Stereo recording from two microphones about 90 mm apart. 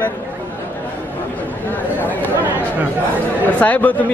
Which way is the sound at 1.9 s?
20° left (ahead or behind).